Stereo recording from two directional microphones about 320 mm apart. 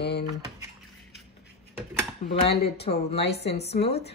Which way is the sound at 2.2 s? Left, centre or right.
Left.